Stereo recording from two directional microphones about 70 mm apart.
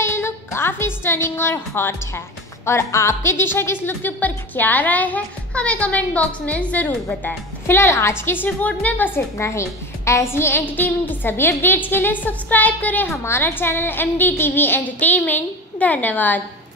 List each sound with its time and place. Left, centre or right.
0.0 s a woman's voice: left
7.6 s a woman's voice: left
8.5 s a woman's voice: left
9.4 s a woman's voice: left
10.6 s a woman's voice: left
13.2 s a woman's voice: left